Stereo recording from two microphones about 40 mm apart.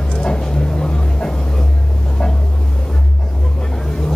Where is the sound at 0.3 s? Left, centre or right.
Centre.